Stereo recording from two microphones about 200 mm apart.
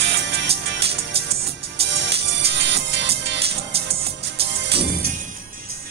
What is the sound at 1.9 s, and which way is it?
Music, 60° right (ahead or behind).